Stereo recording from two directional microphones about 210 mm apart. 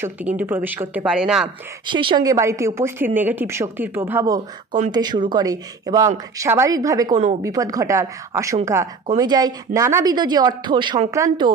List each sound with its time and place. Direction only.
0.0 s a woman's voice: 5° right (ahead or behind)
1.9 s a woman's voice: 25° right (ahead or behind)